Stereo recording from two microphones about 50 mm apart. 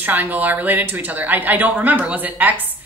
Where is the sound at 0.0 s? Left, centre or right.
Right.